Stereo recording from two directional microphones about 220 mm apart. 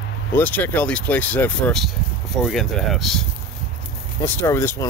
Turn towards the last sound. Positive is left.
turn(degrees=10)  # may be behind; listen again after turning